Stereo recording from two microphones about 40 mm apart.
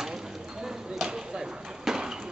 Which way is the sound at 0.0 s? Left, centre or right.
Centre.